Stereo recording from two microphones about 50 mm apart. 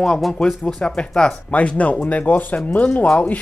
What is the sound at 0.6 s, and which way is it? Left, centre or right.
Speech, left.